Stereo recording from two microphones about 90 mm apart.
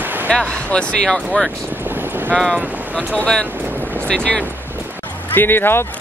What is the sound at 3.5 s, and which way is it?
Boat, 20° right (ahead or behind).